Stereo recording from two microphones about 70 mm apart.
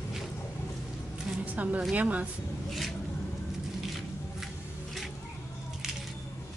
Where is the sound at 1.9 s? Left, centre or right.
Right.